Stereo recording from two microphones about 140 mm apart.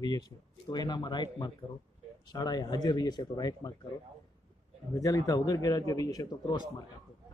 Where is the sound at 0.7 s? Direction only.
30° left (ahead or behind).